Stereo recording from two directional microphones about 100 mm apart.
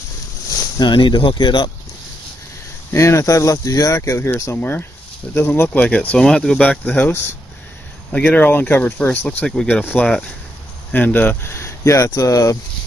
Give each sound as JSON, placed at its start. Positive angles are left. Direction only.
{"t": 0.6, "sound": "speech", "side_deg": 45}
{"t": 2.9, "sound": "speech", "side_deg": 30}
{"t": 8.1, "sound": "speech", "side_deg": 20}